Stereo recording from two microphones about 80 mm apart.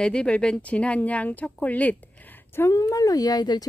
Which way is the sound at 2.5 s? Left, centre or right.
Left.